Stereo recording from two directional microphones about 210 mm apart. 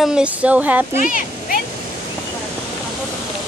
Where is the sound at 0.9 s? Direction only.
40° left (ahead or behind).